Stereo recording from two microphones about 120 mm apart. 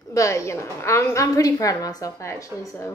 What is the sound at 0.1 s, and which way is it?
A woman's voice, 25° left (ahead or behind).